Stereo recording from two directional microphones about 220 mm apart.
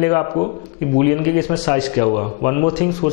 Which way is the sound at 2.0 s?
30° left (ahead or behind).